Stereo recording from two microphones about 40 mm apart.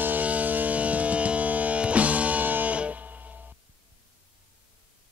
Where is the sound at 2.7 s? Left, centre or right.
Right.